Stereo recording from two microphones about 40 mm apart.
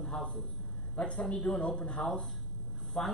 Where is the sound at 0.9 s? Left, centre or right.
Left.